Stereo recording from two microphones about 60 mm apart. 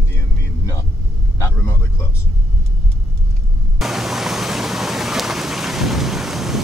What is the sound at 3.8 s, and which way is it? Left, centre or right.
Vehicle, centre.